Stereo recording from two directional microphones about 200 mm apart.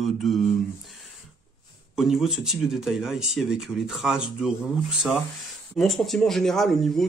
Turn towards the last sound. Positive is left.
turn(degrees=0)  # may be behind; listen again after turning